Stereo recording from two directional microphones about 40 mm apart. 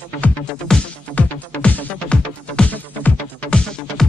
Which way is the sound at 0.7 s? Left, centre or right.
Centre.